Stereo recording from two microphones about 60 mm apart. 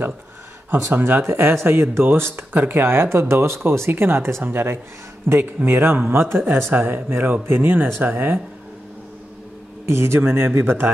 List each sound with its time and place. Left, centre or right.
0.7 s speech: right
9.8 s speech: right